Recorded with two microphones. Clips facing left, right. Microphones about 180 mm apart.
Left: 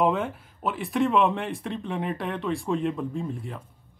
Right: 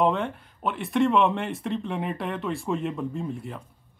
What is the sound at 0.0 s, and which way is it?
Speech, centre (ahead or behind).